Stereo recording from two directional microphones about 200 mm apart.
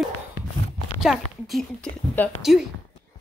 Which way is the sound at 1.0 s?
Centre (ahead or behind).